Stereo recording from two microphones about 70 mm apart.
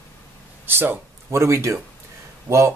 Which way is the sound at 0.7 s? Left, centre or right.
Right.